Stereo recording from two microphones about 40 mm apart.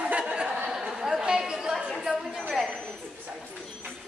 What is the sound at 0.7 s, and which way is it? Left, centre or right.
Speech, centre.